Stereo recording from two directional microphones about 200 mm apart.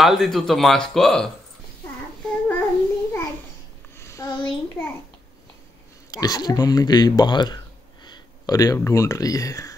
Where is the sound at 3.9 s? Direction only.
15° left (ahead or behind).